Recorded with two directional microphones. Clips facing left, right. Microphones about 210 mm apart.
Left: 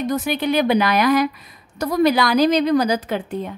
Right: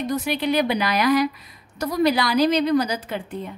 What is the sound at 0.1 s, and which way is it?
Speech, 50° left (ahead or behind).